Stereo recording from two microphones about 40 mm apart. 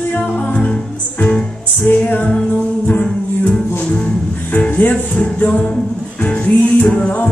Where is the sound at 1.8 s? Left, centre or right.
Left.